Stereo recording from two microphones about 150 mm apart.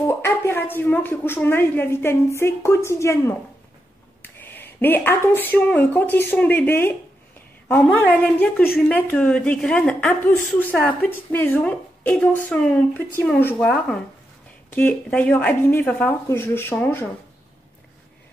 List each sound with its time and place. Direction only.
0.0 s a woman's voice: 15° left (ahead or behind)
4.2 s a sound: 15° left (ahead or behind)
4.7 s a woman's voice: 15° left (ahead or behind)